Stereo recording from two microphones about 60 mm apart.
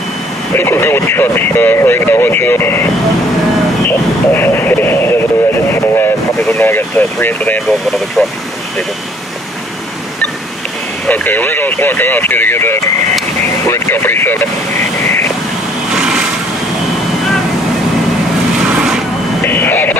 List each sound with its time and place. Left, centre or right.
0.6 s speech: left
4.3 s radio: left
6.6 s speech: left
8.2 s speech: centre
11.1 s speech: left
13.7 s speech: left
13.9 s speech: left
15.9 s a sound: centre
19.4 s radio: left